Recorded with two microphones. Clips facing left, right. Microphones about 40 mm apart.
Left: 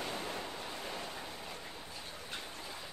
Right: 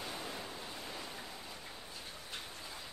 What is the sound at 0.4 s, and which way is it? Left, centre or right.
Waves, left.